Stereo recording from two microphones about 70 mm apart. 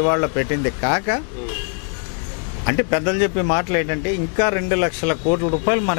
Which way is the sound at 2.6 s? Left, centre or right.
Left.